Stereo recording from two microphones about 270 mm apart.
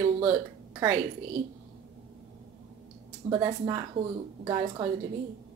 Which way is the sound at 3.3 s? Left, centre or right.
Centre.